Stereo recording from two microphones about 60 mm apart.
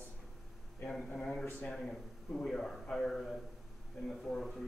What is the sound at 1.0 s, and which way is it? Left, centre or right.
A man's voice, centre.